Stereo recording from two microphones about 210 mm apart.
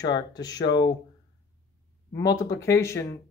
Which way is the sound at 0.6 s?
55° left (ahead or behind).